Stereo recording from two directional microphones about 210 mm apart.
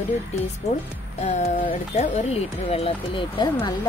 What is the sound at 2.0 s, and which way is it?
Speech, 30° left (ahead or behind).